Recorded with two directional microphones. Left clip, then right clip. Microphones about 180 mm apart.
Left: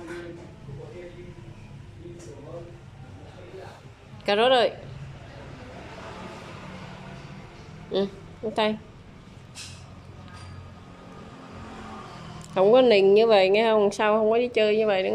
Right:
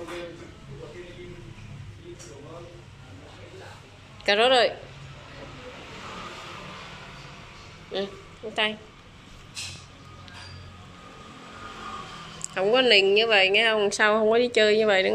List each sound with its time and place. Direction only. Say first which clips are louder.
4.3 s a woman's voice: even; 15° left (ahead or behind)
7.9 s a woman's voice: left 4 dB; 25° left (ahead or behind)
12.5 s a woman's voice: left 2 dB; 20° left (ahead or behind)